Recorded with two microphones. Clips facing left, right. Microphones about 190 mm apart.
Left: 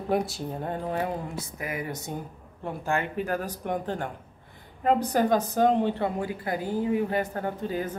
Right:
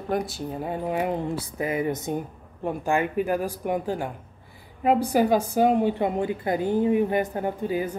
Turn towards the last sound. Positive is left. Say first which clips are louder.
# right 3 dB
turn(degrees=-10)  # may be behind; listen again after turning